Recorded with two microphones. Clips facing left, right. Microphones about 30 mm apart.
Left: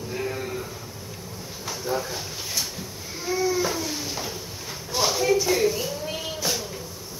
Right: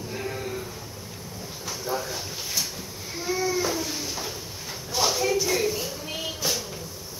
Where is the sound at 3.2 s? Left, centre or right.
Centre.